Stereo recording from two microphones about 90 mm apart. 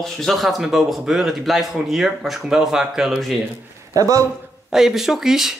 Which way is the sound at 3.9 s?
35° right (ahead or behind).